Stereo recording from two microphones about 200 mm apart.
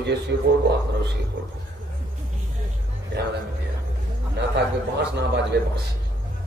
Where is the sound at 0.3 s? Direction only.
50° right (ahead or behind).